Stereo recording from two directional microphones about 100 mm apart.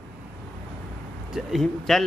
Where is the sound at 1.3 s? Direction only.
Centre (ahead or behind).